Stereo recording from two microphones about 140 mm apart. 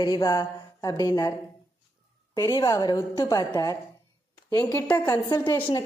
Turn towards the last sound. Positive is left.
turn(degrees=25)  # may be behind; listen again after turning